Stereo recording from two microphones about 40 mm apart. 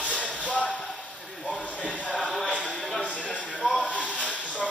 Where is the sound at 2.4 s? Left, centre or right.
Left.